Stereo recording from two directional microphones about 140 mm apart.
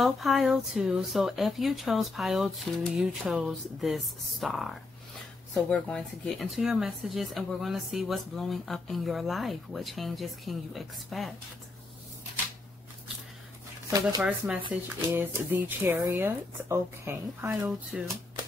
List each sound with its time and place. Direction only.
0.0 s speech: centre (ahead or behind)
13.8 s speech: 25° right (ahead or behind)
14.2 s speech: 10° right (ahead or behind)
17.9 s speech: 5° right (ahead or behind)